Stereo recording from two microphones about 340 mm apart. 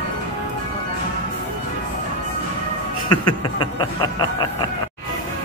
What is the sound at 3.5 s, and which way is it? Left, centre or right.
Speech, centre.